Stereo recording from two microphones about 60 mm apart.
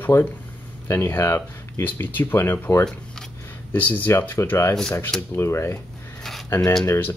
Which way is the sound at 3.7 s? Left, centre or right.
Left.